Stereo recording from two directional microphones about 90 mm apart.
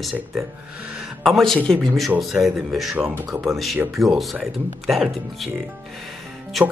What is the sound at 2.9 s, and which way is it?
Speech, 20° right (ahead or behind).